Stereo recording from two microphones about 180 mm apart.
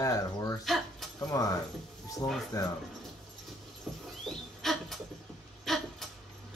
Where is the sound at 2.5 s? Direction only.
20° left (ahead or behind).